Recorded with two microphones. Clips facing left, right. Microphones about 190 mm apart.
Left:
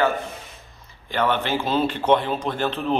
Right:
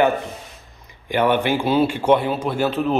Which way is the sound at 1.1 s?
15° right (ahead or behind).